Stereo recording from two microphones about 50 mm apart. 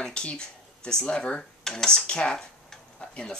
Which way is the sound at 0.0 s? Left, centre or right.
Centre.